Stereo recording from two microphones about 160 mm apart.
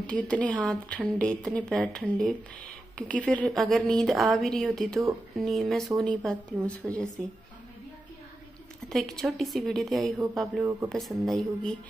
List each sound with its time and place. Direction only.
0.0 s a woman's voice: 5° left (ahead or behind)
8.8 s a woman's voice: 5° left (ahead or behind)
10.6 s speech: 15° right (ahead or behind)
10.9 s a woman's voice: centre (ahead or behind)